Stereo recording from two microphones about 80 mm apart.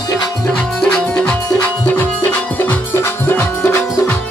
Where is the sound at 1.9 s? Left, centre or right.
Left.